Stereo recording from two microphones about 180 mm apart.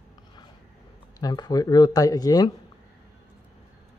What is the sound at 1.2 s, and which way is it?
Speech, 20° left (ahead or behind).